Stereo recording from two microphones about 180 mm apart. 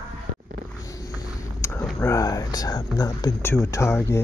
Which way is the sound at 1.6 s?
15° left (ahead or behind).